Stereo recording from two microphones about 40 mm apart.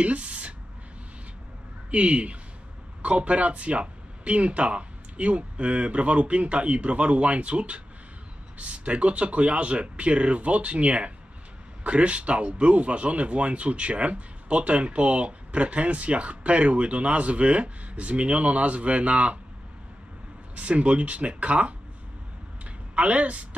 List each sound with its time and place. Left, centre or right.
0.0 s a sound: right
1.9 s speech: right
20.5 s speech: right
22.9 s speech: right